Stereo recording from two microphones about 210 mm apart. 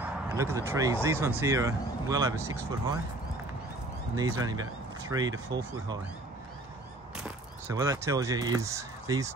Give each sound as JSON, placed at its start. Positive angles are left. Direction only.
{"t": 0.0, "sound": "speech", "side_deg": -10}
{"t": 4.1, "sound": "speech", "side_deg": -15}
{"t": 7.2, "sound": "speech", "side_deg": -10}